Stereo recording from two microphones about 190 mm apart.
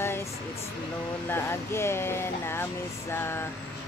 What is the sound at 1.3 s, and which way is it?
Speech, 15° left (ahead or behind).